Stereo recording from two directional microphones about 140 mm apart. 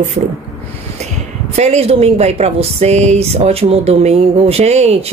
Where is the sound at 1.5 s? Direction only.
50° right (ahead or behind).